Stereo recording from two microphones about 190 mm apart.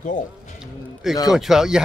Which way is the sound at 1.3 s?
Centre (ahead or behind).